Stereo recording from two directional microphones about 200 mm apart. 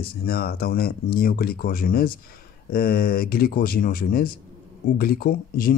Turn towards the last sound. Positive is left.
turn(degrees=45)  # may be behind; listen again after turning